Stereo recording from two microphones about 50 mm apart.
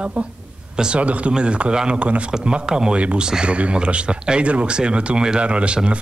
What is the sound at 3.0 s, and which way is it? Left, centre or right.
Speech, right.